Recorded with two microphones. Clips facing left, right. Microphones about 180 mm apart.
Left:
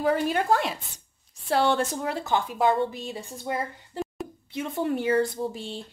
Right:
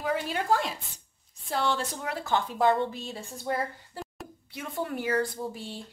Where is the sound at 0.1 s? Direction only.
55° left (ahead or behind).